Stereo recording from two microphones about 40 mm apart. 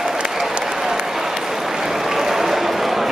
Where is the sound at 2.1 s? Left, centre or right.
Centre.